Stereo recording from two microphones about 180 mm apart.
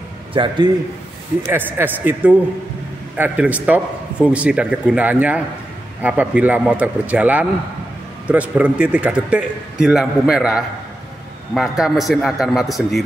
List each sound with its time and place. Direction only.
0.3 s a man's voice: 30° right (ahead or behind)
1.4 s a man's voice: 10° right (ahead or behind)